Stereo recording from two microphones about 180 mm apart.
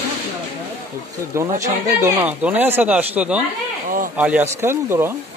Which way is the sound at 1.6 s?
15° right (ahead or behind).